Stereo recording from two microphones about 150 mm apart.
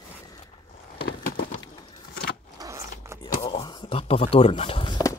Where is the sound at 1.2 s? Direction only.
65° left (ahead or behind).